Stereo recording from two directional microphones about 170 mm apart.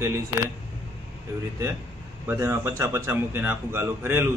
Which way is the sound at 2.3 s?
15° right (ahead or behind).